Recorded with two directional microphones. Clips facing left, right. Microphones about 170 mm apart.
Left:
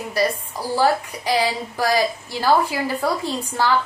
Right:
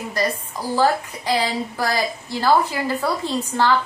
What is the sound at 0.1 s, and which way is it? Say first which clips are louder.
A woman's voice: left 3 dB; 10° left (ahead or behind).